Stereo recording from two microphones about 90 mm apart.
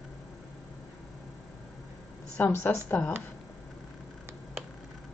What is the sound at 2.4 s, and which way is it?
Speech, 25° left (ahead or behind).